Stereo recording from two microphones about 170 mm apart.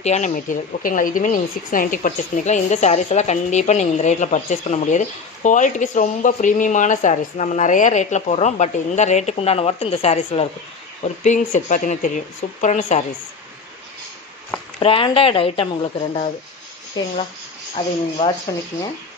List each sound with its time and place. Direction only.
0.0 s speech: 45° left (ahead or behind)
14.8 s speech: 30° left (ahead or behind)